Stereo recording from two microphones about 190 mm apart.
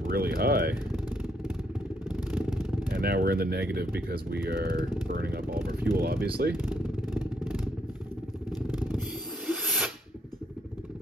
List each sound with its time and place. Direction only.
0.0 s speech: 55° right (ahead or behind)
2.3 s vehicle: centre (ahead or behind)
2.9 s speech: 55° right (ahead or behind)
6.6 s vehicle: 5° right (ahead or behind)
9.5 s snake: centre (ahead or behind)